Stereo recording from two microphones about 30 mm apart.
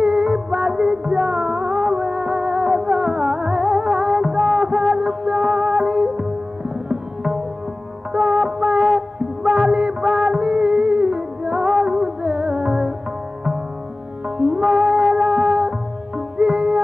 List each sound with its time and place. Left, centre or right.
0.0 s music: centre
14.4 s music: centre